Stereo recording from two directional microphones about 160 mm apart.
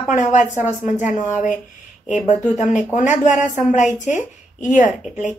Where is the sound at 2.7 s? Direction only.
50° left (ahead or behind).